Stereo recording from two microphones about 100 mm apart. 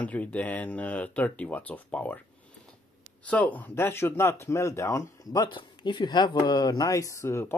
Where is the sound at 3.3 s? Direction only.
15° left (ahead or behind); by 5.4 s 30° left (ahead or behind).